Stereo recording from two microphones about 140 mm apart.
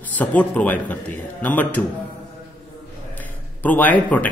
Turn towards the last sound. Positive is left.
turn(degrees=10)  # may be behind; listen again after turning